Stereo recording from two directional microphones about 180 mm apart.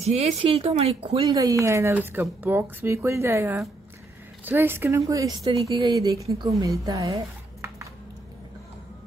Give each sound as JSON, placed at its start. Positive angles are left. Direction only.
{"t": 0.0, "sound": "speech", "side_deg": -35}
{"t": 1.2, "sound": "speech", "side_deg": -20}